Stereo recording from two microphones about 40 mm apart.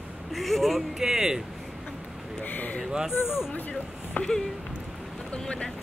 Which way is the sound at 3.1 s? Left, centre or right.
Left.